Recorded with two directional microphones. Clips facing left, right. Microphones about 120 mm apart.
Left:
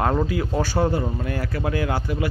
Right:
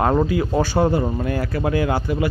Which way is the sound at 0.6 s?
20° right (ahead or behind).